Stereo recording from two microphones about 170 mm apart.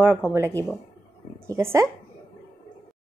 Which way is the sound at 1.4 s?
15° right (ahead or behind).